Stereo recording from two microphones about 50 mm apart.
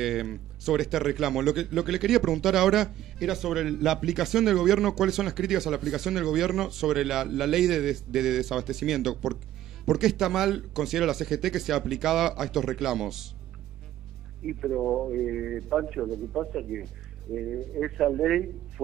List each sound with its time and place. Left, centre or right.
0.0 s a man's voice: centre
14.4 s a man's voice: centre